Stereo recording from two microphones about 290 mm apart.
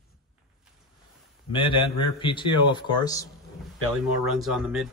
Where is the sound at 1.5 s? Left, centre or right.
Centre.